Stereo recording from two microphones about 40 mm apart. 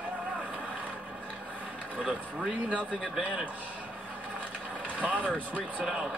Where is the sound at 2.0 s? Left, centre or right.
Right.